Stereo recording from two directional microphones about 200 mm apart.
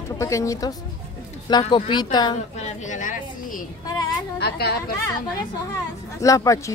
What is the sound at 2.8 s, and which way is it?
Speech, 40° left (ahead or behind).